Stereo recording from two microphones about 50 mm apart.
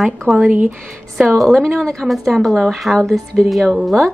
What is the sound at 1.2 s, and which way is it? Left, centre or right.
Speech, centre.